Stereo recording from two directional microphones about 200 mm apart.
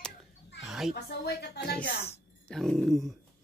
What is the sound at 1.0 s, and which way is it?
Speech, 55° left (ahead or behind).